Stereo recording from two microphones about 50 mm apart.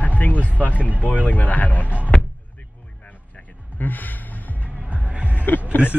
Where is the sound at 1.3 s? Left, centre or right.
Left.